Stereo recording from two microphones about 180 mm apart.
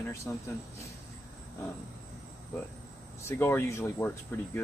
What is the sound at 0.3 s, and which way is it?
Speech, 10° left (ahead or behind).